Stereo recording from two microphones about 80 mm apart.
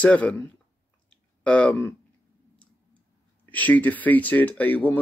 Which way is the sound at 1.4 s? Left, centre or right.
Centre.